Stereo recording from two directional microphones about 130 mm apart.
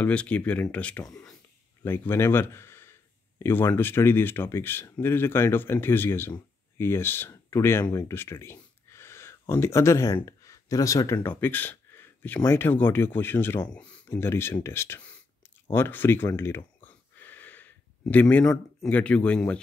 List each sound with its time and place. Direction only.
0.0 s speech: 10° left (ahead or behind); by 8.1 s 30° left (ahead or behind)
8.1 s a sound: 20° left (ahead or behind)
10.2 s speech: 25° left (ahead or behind)
15.7 s a sound: 15° left (ahead or behind)
18.4 s speech: 20° left (ahead or behind)
18.9 s speech: 10° left (ahead or behind)